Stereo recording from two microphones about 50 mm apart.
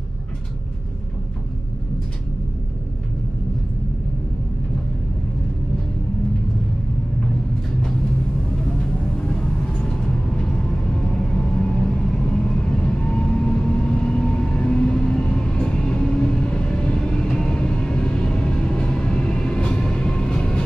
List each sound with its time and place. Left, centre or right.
8.8 s vehicle: centre